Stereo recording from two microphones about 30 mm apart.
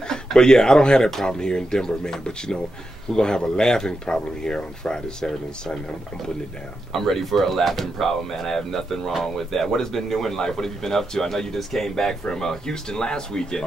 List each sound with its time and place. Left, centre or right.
0.1 s speech: left
6.9 s speech: centre